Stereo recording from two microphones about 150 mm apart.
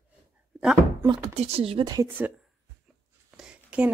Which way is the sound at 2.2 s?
10° right (ahead or behind).